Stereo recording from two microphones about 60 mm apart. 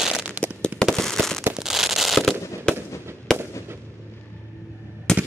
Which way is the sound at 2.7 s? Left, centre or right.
Centre.